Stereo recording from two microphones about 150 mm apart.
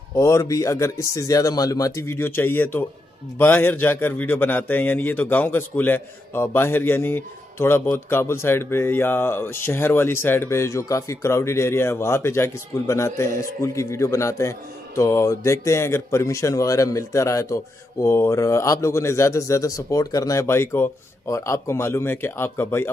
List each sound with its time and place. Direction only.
0.1 s a man's voice: 20° left (ahead or behind)